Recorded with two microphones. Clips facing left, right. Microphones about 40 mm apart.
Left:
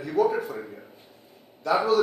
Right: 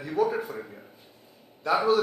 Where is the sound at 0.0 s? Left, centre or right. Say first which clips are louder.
Left 3 dB; centre.